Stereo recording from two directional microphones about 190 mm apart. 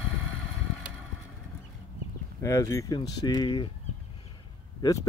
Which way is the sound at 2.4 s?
15° left (ahead or behind).